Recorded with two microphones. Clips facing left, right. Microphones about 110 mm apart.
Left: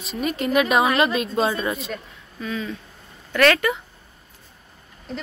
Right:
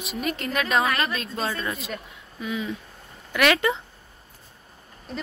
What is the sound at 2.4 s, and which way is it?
A woman's voice, 15° right (ahead or behind).